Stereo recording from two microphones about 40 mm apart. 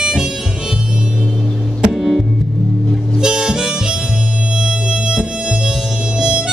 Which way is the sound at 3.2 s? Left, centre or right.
Centre.